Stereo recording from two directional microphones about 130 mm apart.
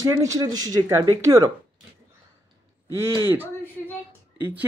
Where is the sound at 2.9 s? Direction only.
20° right (ahead or behind).